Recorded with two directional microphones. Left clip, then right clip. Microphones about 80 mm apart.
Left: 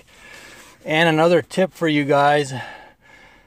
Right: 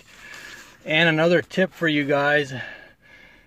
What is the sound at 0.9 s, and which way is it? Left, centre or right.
Speech, left.